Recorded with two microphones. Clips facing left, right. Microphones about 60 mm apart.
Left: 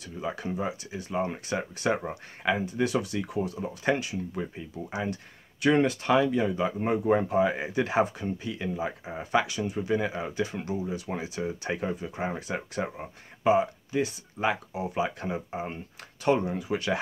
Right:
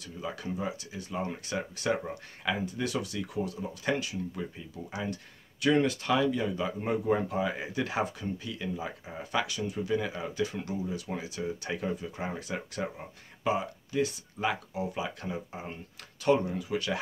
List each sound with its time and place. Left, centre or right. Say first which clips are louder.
0.0 s speech: left 4 dB; left
10.9 s speech: left 3 dB; left